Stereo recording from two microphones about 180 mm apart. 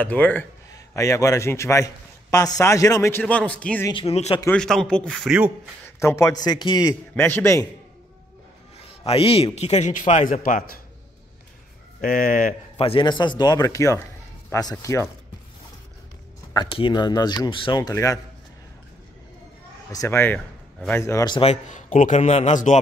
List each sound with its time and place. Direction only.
0.0 s a man's voice: 10° left (ahead or behind)
3.9 s a man's voice: 35° left (ahead or behind)
4.5 s a man's voice: 5° left (ahead or behind)
5.9 s a man's voice: 15° left (ahead or behind)
8.7 s a man's voice: 35° left (ahead or behind); by 10.8 s 50° left (ahead or behind)
12.0 s a man's voice: 50° left (ahead or behind)
12.7 s a man's voice: 30° left (ahead or behind)
16.5 s speech: 25° left (ahead or behind)
19.9 s a man's voice: 15° left (ahead or behind)
21.0 s a man's voice: 20° left (ahead or behind)
21.4 s a man's voice: 40° left (ahead or behind)